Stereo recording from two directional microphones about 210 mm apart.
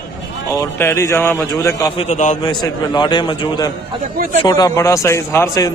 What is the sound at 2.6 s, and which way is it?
A man's voice, 20° left (ahead or behind).